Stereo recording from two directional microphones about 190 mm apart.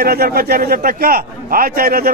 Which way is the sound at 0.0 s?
55° right (ahead or behind).